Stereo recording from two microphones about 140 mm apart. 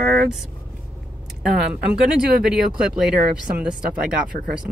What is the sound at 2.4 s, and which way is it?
Speech, 5° right (ahead or behind).